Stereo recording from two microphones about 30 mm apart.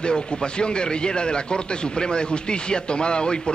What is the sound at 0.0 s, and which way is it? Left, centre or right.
Speech, left.